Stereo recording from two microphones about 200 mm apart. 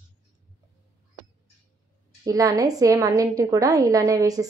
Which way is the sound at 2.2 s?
15° right (ahead or behind).